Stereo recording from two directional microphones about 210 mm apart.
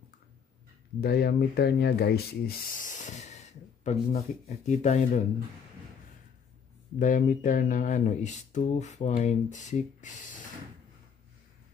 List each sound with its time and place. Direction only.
1.0 s speech: 50° left (ahead or behind)
7.0 s speech: 40° left (ahead or behind)